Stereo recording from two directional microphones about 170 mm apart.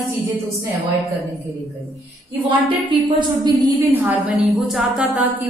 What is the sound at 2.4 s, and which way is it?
A woman's voice, 30° right (ahead or behind).